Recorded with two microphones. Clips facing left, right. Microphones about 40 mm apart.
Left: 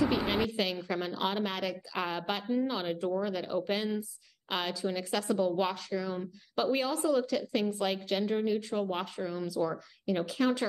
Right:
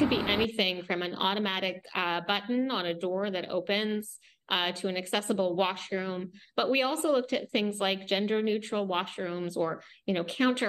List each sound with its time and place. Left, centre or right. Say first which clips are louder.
0.0 s a woman's voice: right 2 dB; right